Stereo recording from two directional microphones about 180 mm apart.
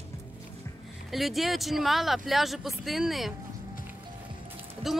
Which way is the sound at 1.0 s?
Centre (ahead or behind).